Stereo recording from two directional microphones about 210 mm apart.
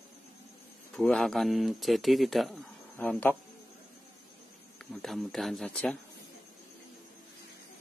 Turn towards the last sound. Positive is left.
turn(degrees=5)  # may be behind; listen again after turning